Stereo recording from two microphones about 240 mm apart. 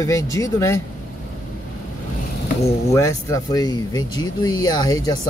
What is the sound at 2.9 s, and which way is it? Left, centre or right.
Speech, centre.